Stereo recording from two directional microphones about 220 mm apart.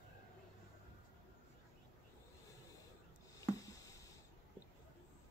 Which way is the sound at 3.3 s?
15° left (ahead or behind).